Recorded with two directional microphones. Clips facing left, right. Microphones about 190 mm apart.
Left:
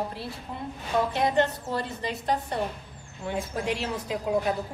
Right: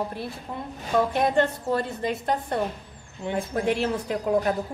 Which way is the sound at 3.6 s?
55° right (ahead or behind).